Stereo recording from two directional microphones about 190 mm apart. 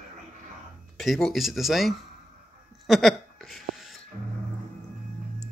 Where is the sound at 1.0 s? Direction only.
Centre (ahead or behind).